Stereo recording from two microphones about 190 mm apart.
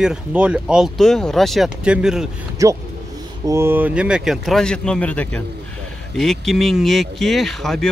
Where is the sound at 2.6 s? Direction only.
15° right (ahead or behind); by 7.8 s centre (ahead or behind).